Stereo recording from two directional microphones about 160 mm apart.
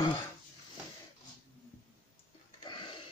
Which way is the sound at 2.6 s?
30° left (ahead or behind).